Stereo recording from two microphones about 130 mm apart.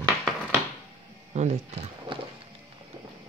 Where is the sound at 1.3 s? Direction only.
55° right (ahead or behind).